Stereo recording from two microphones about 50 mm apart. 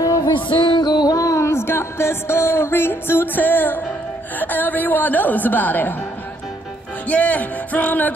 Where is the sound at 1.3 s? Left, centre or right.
Left.